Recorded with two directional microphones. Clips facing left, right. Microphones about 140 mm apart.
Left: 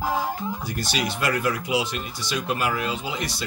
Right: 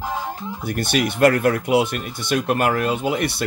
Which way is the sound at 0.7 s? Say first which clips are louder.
Right 10 dB; 55° right (ahead or behind).